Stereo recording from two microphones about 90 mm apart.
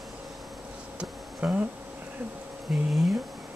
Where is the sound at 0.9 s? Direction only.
15° right (ahead or behind).